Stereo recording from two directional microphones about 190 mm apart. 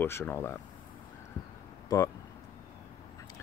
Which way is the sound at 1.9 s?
20° left (ahead or behind).